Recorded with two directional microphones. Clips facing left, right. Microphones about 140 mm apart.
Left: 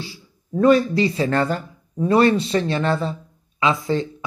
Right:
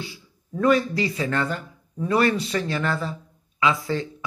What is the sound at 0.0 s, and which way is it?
Speech, 30° left (ahead or behind).